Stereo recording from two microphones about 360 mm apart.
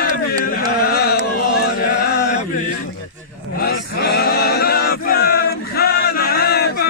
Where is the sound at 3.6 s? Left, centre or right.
Left.